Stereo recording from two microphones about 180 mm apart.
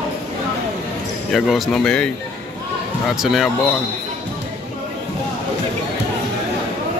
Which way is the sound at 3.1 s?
Centre (ahead or behind).